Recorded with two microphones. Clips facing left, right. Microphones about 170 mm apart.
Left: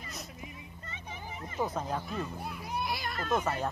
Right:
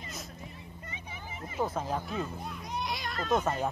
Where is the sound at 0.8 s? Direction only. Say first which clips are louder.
Left 1 dB; 10° right (ahead or behind).